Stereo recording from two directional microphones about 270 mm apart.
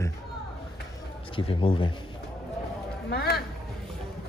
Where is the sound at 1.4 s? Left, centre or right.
Centre.